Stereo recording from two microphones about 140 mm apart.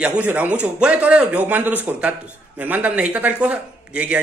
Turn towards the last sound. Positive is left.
turn(degrees=-10)  # may be behind; listen again after turning